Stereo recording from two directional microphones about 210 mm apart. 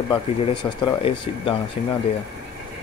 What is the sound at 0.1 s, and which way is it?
Speech, 20° left (ahead or behind).